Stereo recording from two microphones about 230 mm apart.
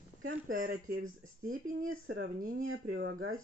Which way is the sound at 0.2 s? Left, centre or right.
Right.